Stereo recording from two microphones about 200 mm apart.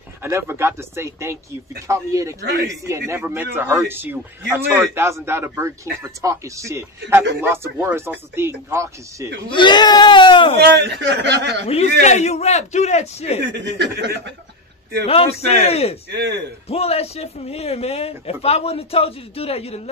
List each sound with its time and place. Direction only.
0.2 s speech: 10° right (ahead or behind)
9.5 s speech: 25° left (ahead or behind)
10.6 s a man's voice: 60° right (ahead or behind)
11.6 s a man's voice: 35° left (ahead or behind)
13.4 s a man's voice: 60° right (ahead or behind)
15.0 s a man's voice: 30° left (ahead or behind)
16.1 s a man's voice: 55° right (ahead or behind)
16.6 s a man's voice: 30° left (ahead or behind)